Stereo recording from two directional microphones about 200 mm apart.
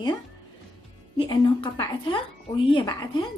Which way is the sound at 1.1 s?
25° left (ahead or behind).